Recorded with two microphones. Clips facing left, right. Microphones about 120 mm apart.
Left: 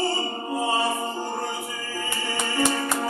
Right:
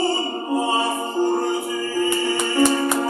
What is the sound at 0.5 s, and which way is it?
Music, 25° right (ahead or behind).